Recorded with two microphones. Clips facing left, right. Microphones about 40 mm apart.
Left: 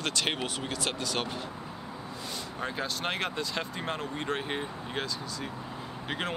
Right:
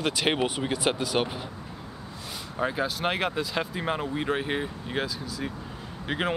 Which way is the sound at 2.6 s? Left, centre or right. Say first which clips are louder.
Right 6 dB; centre.